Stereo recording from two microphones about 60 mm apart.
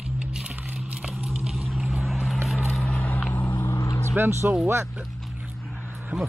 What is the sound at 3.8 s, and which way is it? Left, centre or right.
Vehicle, left.